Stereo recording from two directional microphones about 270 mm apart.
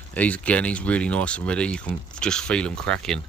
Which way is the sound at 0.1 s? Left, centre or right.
Centre.